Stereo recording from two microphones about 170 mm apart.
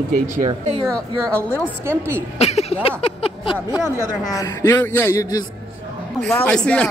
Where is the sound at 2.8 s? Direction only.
35° left (ahead or behind).